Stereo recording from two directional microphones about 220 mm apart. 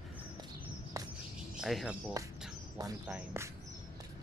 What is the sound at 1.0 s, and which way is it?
Bird, 15° right (ahead or behind).